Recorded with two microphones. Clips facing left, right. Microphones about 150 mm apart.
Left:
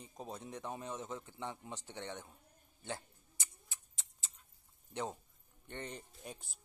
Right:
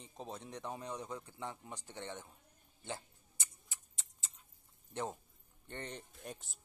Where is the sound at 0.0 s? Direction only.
5° left (ahead or behind).